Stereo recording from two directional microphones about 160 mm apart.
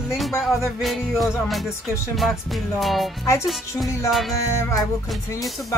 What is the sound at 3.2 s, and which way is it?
Music, 15° left (ahead or behind).